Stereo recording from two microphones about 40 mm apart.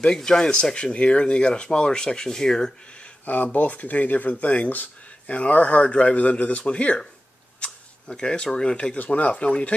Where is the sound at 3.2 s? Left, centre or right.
Left.